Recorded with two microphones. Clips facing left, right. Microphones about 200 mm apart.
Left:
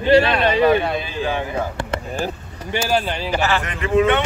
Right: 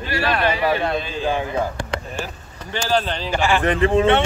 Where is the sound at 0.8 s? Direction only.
5° left (ahead or behind).